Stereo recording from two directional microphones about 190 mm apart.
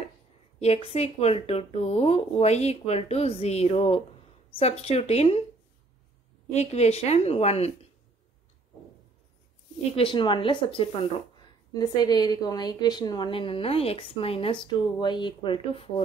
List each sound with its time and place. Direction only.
0.6 s speech: 35° left (ahead or behind)
6.5 s speech: 35° left (ahead or behind)
9.9 s a woman's voice: 25° left (ahead or behind)